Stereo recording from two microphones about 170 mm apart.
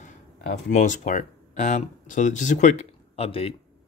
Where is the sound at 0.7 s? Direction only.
50° left (ahead or behind).